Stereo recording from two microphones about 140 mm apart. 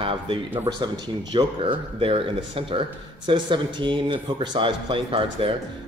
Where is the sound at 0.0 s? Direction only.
40° right (ahead or behind).